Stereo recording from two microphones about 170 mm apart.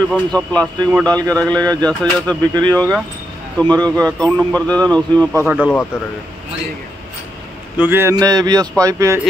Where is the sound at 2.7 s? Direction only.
10° left (ahead or behind).